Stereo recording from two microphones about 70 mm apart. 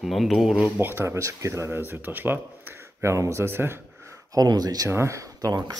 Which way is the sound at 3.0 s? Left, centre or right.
Right.